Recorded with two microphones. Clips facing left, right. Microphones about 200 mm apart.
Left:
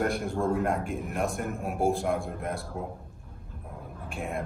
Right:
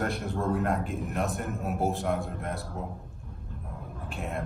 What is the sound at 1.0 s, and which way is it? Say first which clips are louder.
Speech: left 1 dB; centre (ahead or behind).